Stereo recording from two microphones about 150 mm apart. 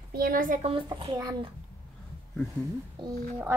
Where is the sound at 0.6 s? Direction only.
40° right (ahead or behind).